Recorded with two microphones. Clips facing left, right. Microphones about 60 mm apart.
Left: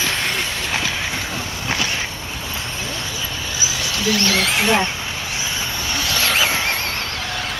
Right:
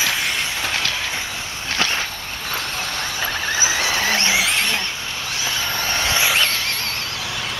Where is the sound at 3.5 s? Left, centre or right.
Right.